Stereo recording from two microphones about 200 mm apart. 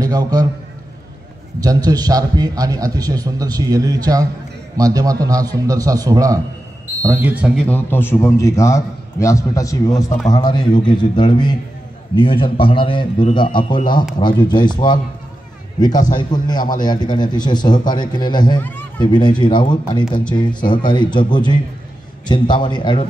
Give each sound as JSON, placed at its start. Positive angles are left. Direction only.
{"t": 0.0, "sound": "a man's voice", "side_deg": -20}
{"t": 1.6, "sound": "a man's voice", "side_deg": -20}
{"t": 7.6, "sound": "a man's voice", "side_deg": 10}
{"t": 16.1, "sound": "speech", "side_deg": 20}
{"t": 18.6, "sound": "speech", "side_deg": 10}
{"t": 18.9, "sound": "speech", "side_deg": 20}
{"t": 22.3, "sound": "speech", "side_deg": 20}